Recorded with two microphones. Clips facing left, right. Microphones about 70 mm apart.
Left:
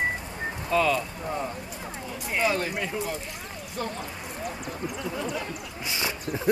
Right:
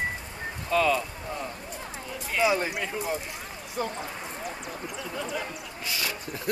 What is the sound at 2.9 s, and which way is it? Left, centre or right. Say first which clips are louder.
Speech: right 1 dB; centre.